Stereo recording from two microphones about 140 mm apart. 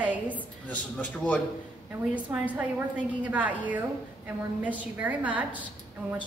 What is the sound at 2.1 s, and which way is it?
A woman's voice, 10° right (ahead or behind).